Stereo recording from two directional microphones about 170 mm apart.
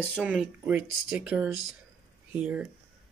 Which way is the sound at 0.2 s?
5° right (ahead or behind).